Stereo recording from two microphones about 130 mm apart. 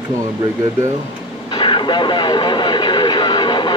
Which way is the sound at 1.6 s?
35° left (ahead or behind).